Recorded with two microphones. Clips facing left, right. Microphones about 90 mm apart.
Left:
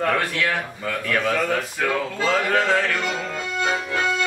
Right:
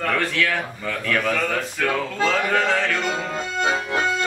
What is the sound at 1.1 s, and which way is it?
Speech, 5° left (ahead or behind).